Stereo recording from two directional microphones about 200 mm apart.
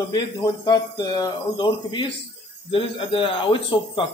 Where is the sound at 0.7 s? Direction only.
20° left (ahead or behind).